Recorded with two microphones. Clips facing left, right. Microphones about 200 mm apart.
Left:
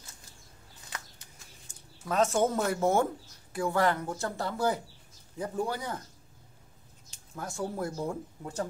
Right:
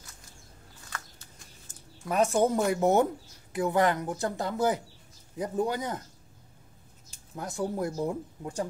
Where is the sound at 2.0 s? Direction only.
15° right (ahead or behind).